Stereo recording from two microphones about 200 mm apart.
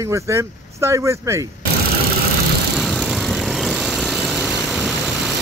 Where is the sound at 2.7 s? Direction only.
Centre (ahead or behind).